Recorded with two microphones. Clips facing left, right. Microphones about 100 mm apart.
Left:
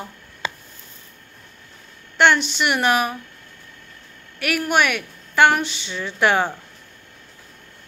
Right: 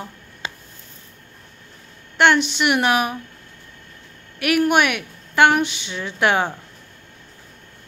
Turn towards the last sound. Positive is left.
turn(degrees=-5)  # may be behind; listen again after turning